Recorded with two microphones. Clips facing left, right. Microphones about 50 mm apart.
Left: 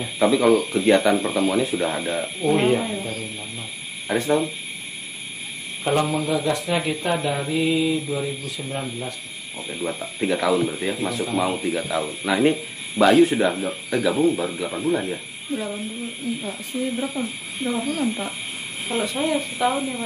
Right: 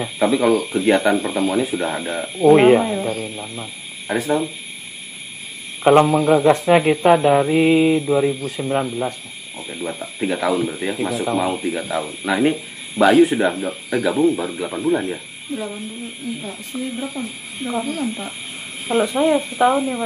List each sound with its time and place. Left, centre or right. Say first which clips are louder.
0.2 s speech: even; centre
2.4 s speech: right 9 dB; right
4.1 s speech: right 1 dB; centre
5.9 s speech: right 9 dB; right
9.6 s speech: right 1 dB; centre
15.5 s speech: even; centre
18.9 s speech: right 7 dB; right